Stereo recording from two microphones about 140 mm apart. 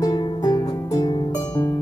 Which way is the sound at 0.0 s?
25° left (ahead or behind).